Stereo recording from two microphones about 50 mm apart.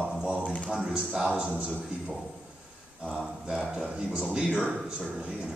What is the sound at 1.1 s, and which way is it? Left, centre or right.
Speech, centre.